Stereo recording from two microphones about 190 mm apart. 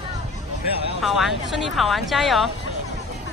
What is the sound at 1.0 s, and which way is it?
Speech, centre (ahead or behind).